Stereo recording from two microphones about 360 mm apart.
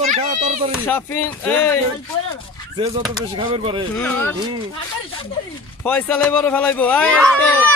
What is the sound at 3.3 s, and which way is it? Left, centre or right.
Speech, centre.